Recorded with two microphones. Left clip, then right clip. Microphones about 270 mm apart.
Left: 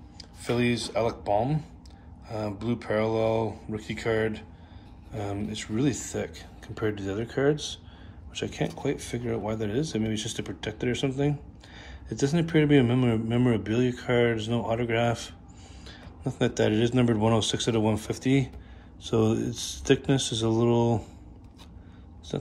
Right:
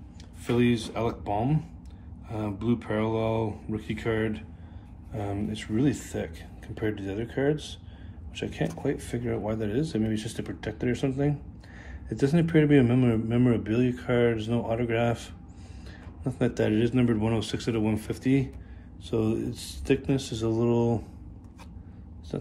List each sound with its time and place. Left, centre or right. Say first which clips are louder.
0.5 s speech: right 1 dB; centre
22.3 s speech: left 2 dB; centre